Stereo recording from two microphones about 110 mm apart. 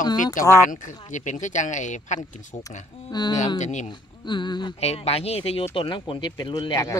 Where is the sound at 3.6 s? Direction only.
90° left.